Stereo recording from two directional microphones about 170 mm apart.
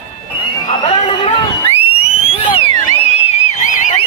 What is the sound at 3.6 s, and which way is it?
Neigh, 50° left (ahead or behind).